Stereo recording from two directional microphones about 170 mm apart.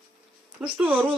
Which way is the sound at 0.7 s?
10° right (ahead or behind).